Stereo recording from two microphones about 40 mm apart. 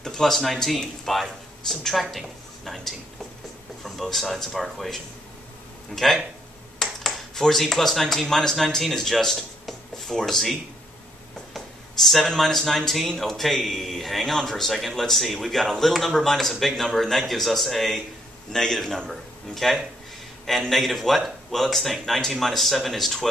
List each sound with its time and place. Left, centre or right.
0.0 s a woman's voice: centre